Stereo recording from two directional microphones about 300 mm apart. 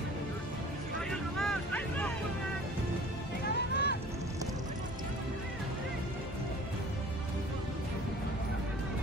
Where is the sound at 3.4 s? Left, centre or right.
Left.